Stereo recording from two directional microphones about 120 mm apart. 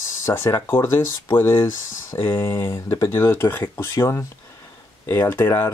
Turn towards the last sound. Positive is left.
turn(degrees=20)  # may be behind; listen again after turning